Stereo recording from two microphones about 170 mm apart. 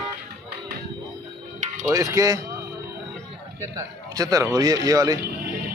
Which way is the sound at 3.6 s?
20° right (ahead or behind).